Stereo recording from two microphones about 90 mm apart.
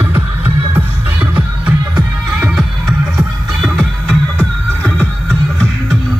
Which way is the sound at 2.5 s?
5° right (ahead or behind).